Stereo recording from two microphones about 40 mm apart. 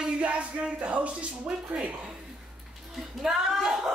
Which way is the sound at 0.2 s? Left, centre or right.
Right.